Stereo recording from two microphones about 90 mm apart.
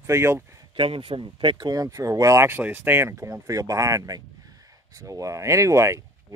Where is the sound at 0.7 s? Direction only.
80° right.